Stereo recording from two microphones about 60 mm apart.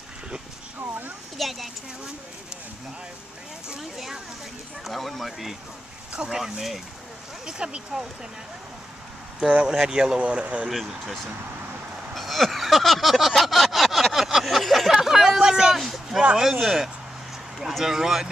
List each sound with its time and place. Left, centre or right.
0.7 s speech: right
1.4 s speech: centre
3.6 s speech: centre
6.1 s speech: centre
9.4 s speech: centre
12.1 s a sound: centre
16.2 s speech: centre